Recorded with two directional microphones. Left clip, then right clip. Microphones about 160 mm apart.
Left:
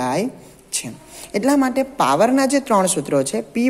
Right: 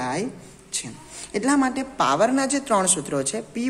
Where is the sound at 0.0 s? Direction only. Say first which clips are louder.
Left 6 dB; 30° left (ahead or behind).